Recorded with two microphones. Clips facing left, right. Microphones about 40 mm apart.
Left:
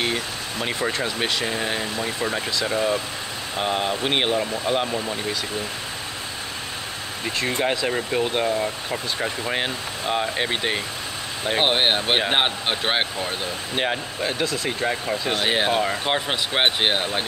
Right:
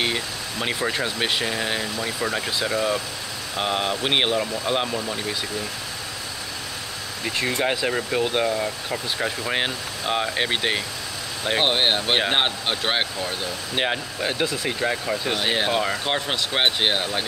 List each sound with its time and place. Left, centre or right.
0.0 s speech: right
1.4 s speech: centre
3.5 s speech: centre
7.6 s speech: centre
9.5 s speech: centre
11.5 s speech: centre
13.7 s speech: centre
15.3 s speech: centre